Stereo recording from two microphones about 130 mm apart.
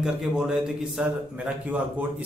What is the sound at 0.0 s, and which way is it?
A man's voice, 5° right (ahead or behind).